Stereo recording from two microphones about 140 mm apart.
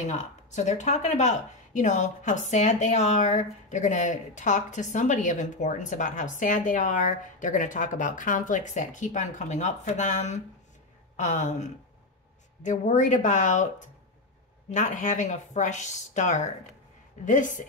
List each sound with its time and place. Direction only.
0.0 s speech: 55° left (ahead or behind)